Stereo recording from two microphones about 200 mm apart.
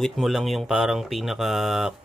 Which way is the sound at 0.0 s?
Centre (ahead or behind).